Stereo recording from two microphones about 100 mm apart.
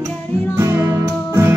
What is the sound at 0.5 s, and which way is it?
Music, 25° right (ahead or behind).